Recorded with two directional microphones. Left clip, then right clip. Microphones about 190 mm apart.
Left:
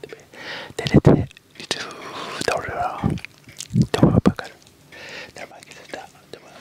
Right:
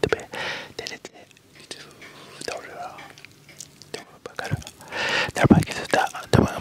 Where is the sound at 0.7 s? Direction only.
40° left (ahead or behind).